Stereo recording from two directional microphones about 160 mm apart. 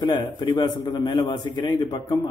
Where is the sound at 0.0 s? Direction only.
25° left (ahead or behind).